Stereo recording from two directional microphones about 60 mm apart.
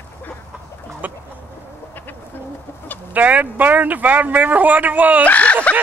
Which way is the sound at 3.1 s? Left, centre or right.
Right.